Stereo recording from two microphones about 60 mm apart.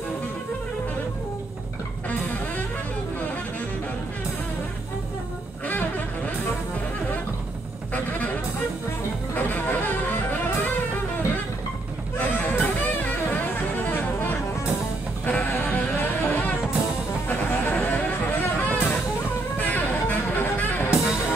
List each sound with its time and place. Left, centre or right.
5.7 s a sound: left
9.3 s music: left
12.2 s music: left
20.9 s music: centre